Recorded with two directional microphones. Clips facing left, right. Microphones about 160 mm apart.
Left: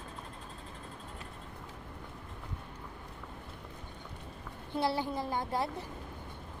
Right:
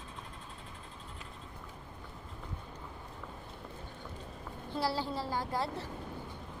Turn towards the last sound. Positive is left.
turn(degrees=20)  # may be behind; listen again after turning